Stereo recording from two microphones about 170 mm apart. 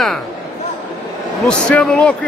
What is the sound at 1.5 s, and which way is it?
Speech, 5° left (ahead or behind).